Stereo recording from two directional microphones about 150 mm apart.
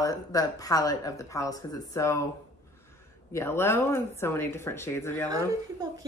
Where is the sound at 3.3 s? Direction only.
15° left (ahead or behind).